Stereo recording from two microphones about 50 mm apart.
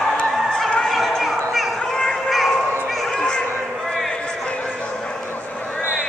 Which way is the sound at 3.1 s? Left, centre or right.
Centre.